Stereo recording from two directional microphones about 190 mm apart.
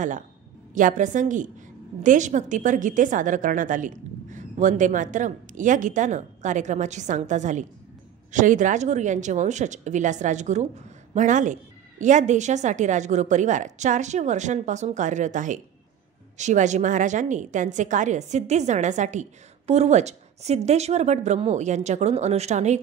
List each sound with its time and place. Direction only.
0.7 s a woman's voice: 40° right (ahead or behind)